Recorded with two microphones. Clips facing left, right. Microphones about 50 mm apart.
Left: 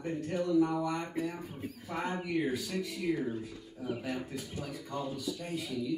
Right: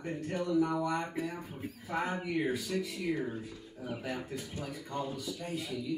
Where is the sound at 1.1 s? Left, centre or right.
Right.